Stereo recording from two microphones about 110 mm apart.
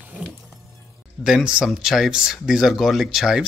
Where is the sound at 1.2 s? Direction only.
5° right (ahead or behind).